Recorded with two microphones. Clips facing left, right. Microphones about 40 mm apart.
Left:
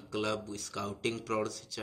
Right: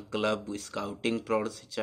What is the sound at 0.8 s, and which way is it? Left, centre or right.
Speech, right.